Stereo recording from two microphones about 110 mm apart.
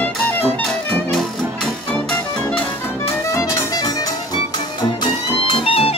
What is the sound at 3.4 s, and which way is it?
Music, 35° left (ahead or behind).